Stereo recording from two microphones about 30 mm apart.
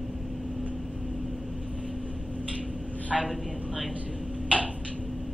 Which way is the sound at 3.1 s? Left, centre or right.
Centre.